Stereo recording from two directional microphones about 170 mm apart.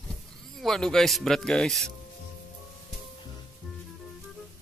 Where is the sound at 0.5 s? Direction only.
Centre (ahead or behind).